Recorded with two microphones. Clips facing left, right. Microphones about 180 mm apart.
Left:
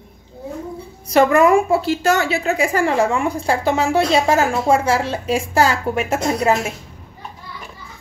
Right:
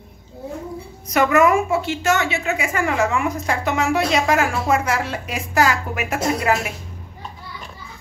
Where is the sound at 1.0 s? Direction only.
30° left (ahead or behind).